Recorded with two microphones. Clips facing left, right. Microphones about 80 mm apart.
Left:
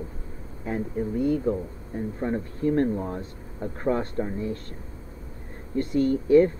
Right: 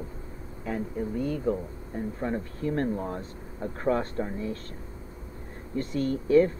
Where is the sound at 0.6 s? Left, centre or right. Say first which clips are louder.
Left 3 dB; left.